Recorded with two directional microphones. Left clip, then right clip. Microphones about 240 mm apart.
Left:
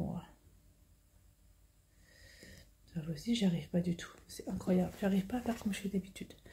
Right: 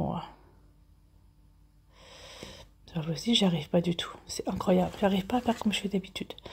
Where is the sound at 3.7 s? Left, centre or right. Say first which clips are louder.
Right 10 dB; right.